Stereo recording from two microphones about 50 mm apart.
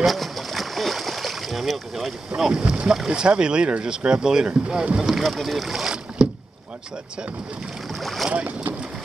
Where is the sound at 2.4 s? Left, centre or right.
Centre.